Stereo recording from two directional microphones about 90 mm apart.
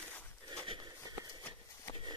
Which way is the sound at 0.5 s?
60° right (ahead or behind).